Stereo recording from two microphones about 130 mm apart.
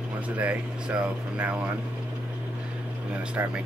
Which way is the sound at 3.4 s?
15° right (ahead or behind).